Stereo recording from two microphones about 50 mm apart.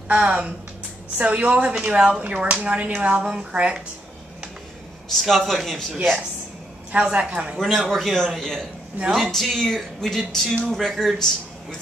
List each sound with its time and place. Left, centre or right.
0.1 s speech: right
5.2 s speech: centre
6.9 s speech: right
7.5 s a man's voice: centre